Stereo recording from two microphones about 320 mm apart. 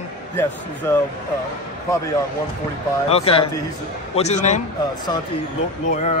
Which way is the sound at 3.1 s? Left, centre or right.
Centre.